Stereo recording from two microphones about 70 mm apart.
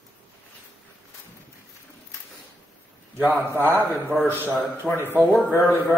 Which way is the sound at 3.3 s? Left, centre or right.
Right.